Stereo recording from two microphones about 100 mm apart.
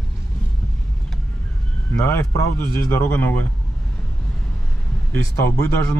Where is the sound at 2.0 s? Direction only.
30° left (ahead or behind).